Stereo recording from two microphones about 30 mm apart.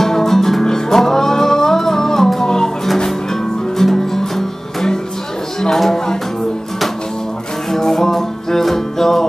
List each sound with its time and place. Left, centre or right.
0.0 s music: centre
2.4 s music: left
3.7 s music: centre
5.6 s a sound: centre
7.7 s music: centre